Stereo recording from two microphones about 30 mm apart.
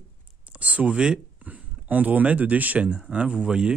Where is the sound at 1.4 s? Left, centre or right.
Right.